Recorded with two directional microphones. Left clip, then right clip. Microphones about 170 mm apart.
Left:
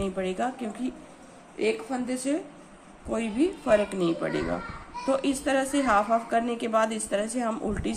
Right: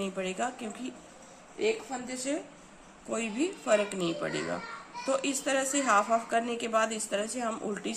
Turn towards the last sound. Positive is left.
turn(degrees=5)  # may be behind; listen again after turning